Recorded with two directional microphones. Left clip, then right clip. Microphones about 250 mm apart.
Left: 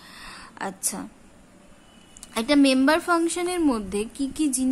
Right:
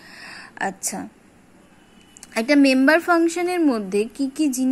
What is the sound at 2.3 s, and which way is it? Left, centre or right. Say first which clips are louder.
A woman's voice: right 3 dB; centre.